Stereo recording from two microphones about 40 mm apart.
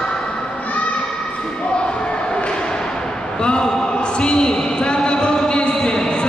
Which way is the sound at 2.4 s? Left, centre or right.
Left.